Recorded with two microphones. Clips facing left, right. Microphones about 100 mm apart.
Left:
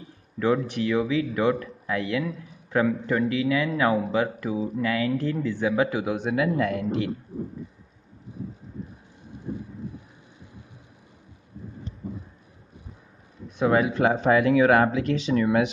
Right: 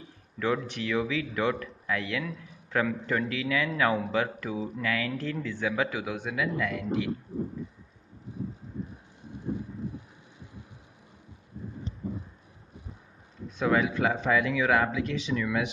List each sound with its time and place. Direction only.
0.8 s a man's voice: 25° left (ahead or behind)
6.3 s speech: 40° left (ahead or behind)
13.7 s a man's voice: 35° left (ahead or behind)
14.4 s speech: 45° left (ahead or behind)